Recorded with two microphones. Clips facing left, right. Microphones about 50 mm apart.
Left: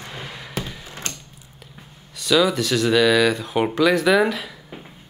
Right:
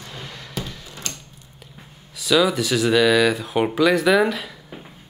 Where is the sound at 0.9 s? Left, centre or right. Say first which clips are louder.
Left 1 dB; left.